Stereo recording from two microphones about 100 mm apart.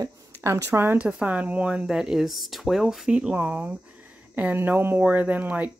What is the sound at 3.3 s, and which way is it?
Speech, 25° right (ahead or behind).